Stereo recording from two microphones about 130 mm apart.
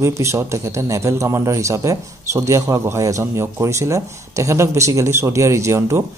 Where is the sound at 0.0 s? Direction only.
20° right (ahead or behind).